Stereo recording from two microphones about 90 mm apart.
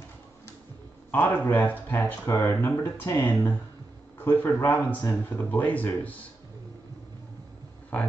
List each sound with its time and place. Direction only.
1.1 s speech: 20° left (ahead or behind)
2.2 s speech: 30° left (ahead or behind)
7.9 s speech: 15° left (ahead or behind)